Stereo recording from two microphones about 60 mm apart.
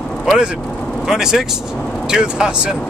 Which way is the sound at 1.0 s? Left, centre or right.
Centre.